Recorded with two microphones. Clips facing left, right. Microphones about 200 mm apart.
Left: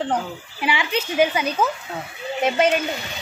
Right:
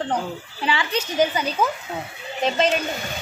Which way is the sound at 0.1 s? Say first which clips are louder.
Left 1 dB; 10° left (ahead or behind).